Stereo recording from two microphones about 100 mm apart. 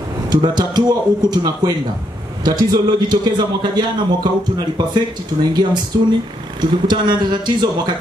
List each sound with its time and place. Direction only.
0.3 s speech: 45° right (ahead or behind)